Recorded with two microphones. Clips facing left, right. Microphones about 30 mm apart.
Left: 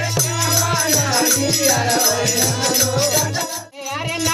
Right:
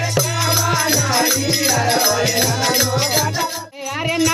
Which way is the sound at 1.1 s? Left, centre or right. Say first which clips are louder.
Right 1 dB; centre.